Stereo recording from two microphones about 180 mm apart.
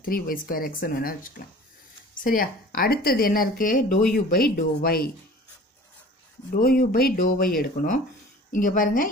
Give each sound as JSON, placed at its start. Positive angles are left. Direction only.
{"t": 0.0, "sound": "a woman's voice", "side_deg": 50}
{"t": 6.5, "sound": "speech", "side_deg": 55}